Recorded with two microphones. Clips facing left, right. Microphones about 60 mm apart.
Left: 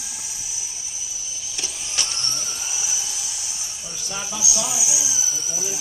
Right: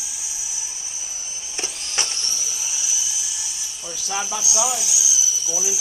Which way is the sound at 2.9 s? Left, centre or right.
Left.